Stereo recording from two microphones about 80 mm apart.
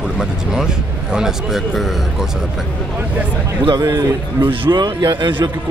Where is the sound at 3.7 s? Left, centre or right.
Right.